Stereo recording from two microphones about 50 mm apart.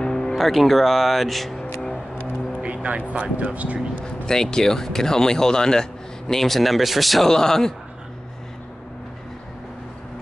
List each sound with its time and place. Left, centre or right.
0.0 s music: centre
2.6 s vehicle: right
3.1 s speech: right
4.0 s speech: centre